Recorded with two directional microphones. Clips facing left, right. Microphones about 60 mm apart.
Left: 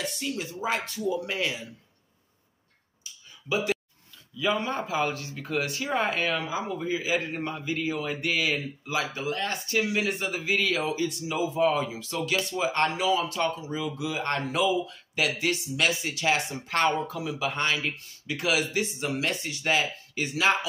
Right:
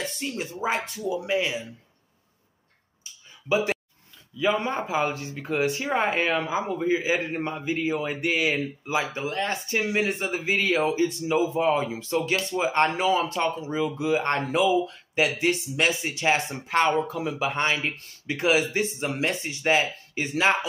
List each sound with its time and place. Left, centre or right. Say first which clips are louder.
0.2 s speech: right 2 dB; right
3.0 s a sound: even; right
4.4 s speech: right 3 dB; right
12.8 s a man's voice: right 1 dB; right
16.6 s speech: right 3 dB; centre